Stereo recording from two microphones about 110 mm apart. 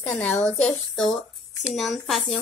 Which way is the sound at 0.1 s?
15° left (ahead or behind).